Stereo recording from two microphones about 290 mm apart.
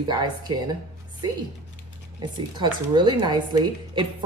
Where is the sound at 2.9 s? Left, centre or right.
Centre.